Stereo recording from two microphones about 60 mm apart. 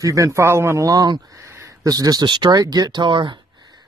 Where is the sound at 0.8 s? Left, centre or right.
Right.